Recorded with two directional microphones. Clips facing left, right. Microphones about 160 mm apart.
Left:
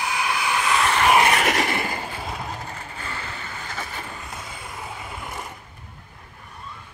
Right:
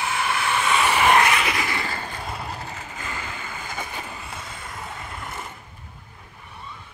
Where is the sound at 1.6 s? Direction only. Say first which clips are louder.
Left 3 dB; 20° left (ahead or behind); by 4.3 s 10° right (ahead or behind).